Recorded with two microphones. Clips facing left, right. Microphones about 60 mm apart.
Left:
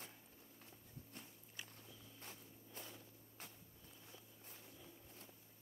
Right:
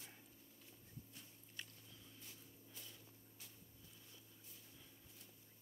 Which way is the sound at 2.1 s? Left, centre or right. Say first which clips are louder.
Left 4 dB; left.